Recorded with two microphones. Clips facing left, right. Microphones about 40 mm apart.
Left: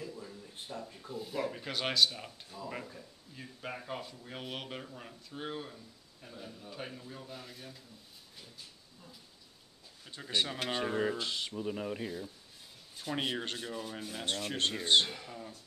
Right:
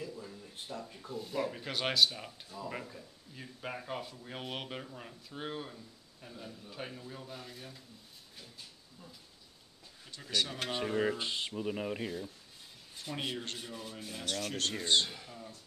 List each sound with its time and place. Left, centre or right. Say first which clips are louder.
0.0 s a sound: right 1 dB; centre
0.8 s speech: even; centre
10.1 s speech: left 1 dB; left
11.1 s speech: even; right
13.1 s speech: left 4 dB; left
13.6 s speech: left 4 dB; centre
14.2 s speech: left 2 dB; left